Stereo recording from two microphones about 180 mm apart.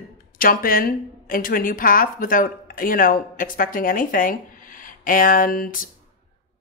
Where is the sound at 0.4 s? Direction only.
55° left (ahead or behind).